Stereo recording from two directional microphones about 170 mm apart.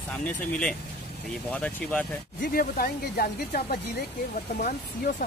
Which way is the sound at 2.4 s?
60° left (ahead or behind).